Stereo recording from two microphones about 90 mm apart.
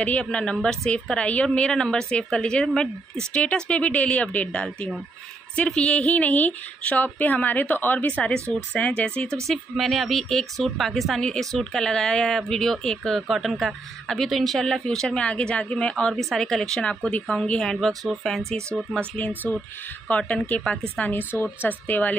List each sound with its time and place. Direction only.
0.0 s a woman's voice: 15° left (ahead or behind)
18.9 s a woman's voice: 15° left (ahead or behind)